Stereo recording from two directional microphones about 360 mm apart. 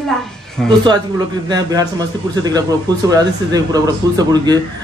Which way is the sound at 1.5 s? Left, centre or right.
Centre.